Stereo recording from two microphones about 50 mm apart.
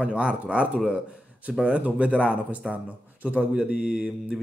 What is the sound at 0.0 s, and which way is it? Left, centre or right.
Speech, right.